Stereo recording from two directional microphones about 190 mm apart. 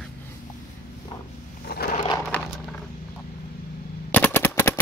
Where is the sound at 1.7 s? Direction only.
55° left (ahead or behind).